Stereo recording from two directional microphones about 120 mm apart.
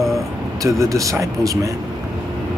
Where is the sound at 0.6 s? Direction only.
25° right (ahead or behind).